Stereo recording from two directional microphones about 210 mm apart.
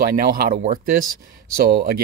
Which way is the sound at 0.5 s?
30° right (ahead or behind).